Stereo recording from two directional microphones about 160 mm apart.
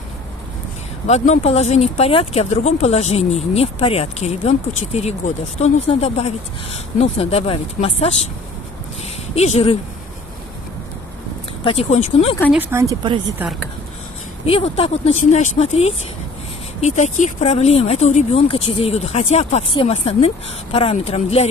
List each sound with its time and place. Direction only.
1.0 s speech: 45° left (ahead or behind)
9.3 s speech: 40° left (ahead or behind)
11.6 s speech: 40° left (ahead or behind)
12.5 s speech: 15° right (ahead or behind)
14.4 s speech: 35° left (ahead or behind)